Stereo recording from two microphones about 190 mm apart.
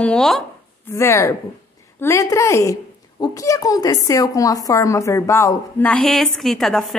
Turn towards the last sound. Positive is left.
turn(degrees=0)  # may be behind; listen again after turning